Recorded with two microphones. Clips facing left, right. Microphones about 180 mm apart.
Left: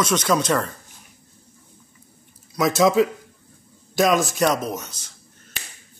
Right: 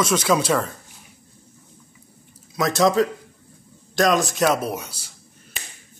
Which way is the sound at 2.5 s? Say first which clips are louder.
Left 1 dB; centre (ahead or behind).